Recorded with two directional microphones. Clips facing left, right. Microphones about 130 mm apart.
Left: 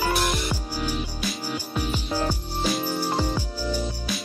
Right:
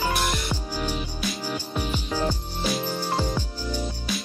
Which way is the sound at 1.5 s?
10° left (ahead or behind).